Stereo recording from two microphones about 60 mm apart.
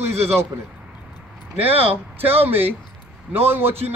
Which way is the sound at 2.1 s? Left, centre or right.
Right.